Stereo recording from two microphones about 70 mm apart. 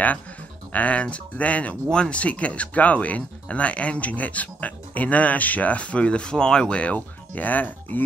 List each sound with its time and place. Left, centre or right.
0.7 s speech: centre